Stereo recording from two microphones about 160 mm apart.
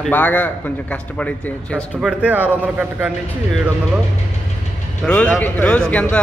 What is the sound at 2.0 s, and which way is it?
Speech, 5° right (ahead or behind).